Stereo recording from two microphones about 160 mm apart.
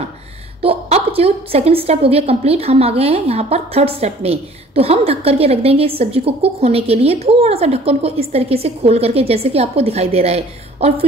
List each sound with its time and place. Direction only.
0.6 s a woman's voice: 40° right (ahead or behind)